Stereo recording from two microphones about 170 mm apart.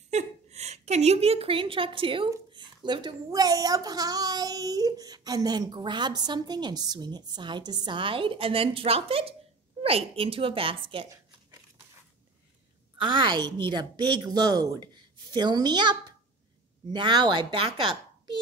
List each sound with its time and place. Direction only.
0.1 s a woman's voice: 40° right (ahead or behind)
13.0 s a child's voice: 25° right (ahead or behind)